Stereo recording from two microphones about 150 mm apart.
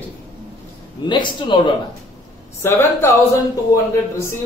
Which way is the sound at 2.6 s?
15° left (ahead or behind).